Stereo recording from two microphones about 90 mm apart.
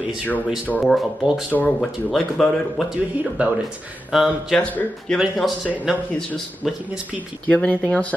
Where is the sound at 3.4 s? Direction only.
15° right (ahead or behind).